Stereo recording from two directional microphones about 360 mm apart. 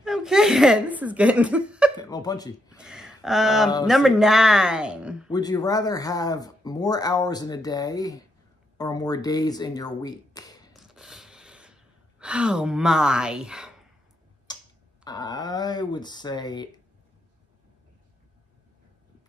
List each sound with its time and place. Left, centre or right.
0.0 s speech: centre
2.0 s speech: centre
2.8 s speech: centre
5.3 s speech: centre
10.7 s gasp: centre
14.5 s a sound: centre
15.0 s speech: centre